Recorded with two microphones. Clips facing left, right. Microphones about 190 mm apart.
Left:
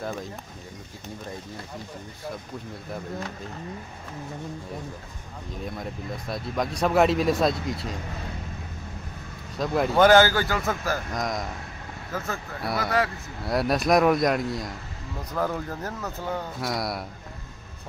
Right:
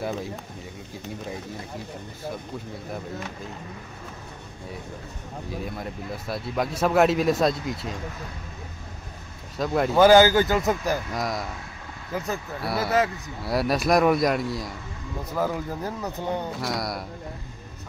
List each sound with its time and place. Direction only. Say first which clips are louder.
5.7 s speech: right 1 dB; 5° right (ahead or behind)
9.6 s speech: right 1 dB; centre (ahead or behind)
10.0 s speech: right 3 dB; 15° right (ahead or behind)
11.1 s speech: even; 5° right (ahead or behind)
12.1 s speech: right 3 dB; 15° right (ahead or behind)
12.6 s speech: right 2 dB; 5° right (ahead or behind)
16.6 s speech: even; centre (ahead or behind)